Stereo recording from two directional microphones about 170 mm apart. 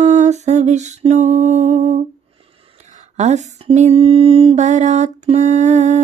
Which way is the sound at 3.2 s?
40° right (ahead or behind).